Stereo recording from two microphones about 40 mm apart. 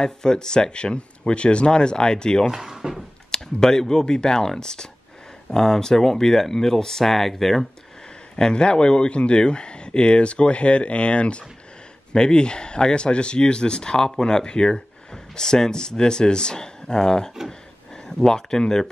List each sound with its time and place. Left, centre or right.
0.0 s speech: centre
2.4 s speech: centre
3.3 s speech: centre
8.4 s speech: left